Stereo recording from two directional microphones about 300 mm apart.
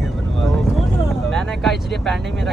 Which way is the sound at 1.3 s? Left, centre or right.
Centre.